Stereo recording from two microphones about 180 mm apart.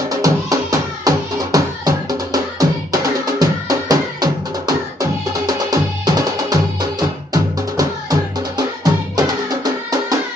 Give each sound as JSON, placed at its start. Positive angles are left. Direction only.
{"t": 0.2, "sound": "music", "side_deg": -20}